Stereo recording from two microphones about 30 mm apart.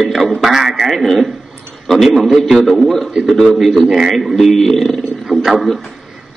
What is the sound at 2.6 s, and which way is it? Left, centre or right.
A man's voice, centre.